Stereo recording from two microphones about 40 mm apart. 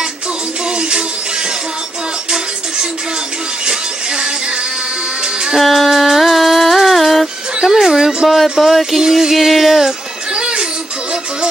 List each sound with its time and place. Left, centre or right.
0.7 s music: right
3.6 s music: right
5.6 s music: centre
7.6 s music: centre
8.3 s a sound: centre
9.0 s a sound: centre
9.8 s music: centre